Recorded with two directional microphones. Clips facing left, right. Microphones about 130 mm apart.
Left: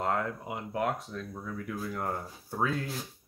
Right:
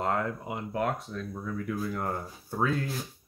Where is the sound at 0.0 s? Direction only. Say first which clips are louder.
Right 1 dB; centre (ahead or behind).